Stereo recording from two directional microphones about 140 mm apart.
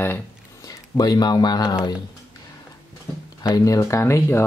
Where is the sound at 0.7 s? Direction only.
25° left (ahead or behind).